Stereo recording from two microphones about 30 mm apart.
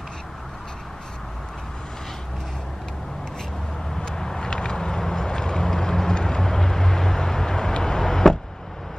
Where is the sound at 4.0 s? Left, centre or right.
Left.